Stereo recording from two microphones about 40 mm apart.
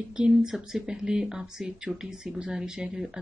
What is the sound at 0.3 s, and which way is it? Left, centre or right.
Speech, centre.